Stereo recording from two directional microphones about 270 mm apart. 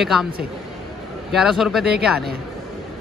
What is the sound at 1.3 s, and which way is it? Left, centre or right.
Speech, centre.